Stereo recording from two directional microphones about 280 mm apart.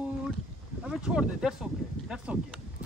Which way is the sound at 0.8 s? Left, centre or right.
Centre.